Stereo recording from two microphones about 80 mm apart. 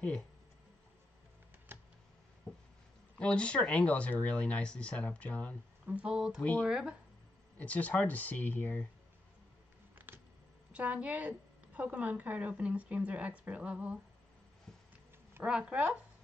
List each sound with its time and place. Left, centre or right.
1.7 s a sound: right
3.2 s speech: centre
5.9 s a woman's voice: centre
6.4 s speech: centre
6.7 s a woman's voice: centre
7.5 s speech: centre
9.9 s a sound: right
10.7 s a woman's voice: centre
15.4 s a woman's voice: centre